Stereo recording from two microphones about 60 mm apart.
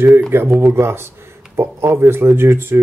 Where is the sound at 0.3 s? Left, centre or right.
Right.